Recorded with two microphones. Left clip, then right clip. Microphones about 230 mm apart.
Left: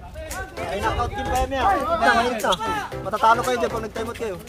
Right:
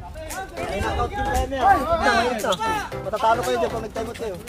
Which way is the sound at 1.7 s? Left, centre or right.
Right.